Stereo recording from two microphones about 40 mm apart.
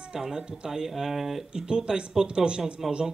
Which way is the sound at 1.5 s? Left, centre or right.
Centre.